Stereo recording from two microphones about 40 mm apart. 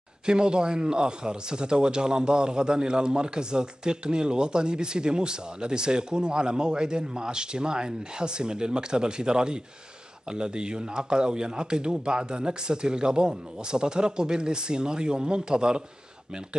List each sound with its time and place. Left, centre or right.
0.3 s a man's voice: right